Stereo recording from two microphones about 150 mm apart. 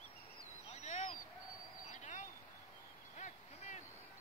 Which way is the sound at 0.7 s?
50° left (ahead or behind).